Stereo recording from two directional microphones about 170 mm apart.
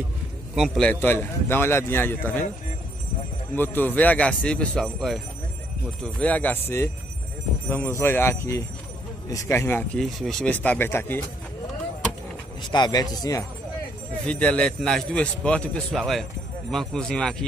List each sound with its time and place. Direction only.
0.6 s a man's voice: 5° left (ahead or behind)
3.5 s a man's voice: 10° left (ahead or behind)
12.7 s speech: 25° left (ahead or behind)
14.2 s a man's voice: 5° left (ahead or behind)